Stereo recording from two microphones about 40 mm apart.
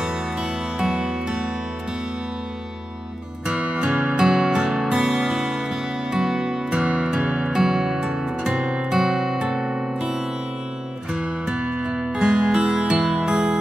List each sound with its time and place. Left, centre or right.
0.0 s music: centre
3.4 s music: right
4.2 s music: centre
11.1 s music: right